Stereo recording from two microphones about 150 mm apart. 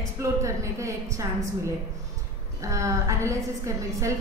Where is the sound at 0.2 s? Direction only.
20° right (ahead or behind).